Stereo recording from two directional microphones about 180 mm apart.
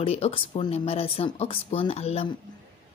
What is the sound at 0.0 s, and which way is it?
Speech, 35° left (ahead or behind).